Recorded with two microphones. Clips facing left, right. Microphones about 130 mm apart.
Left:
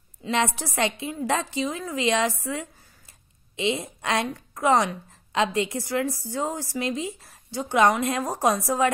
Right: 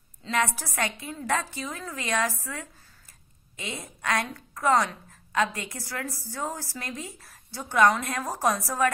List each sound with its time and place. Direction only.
0.3 s a woman's voice: 25° left (ahead or behind)
3.7 s a woman's voice: 25° left (ahead or behind)